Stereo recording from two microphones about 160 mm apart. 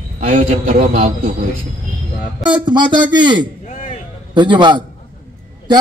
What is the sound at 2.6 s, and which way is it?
Speech, 30° right (ahead or behind).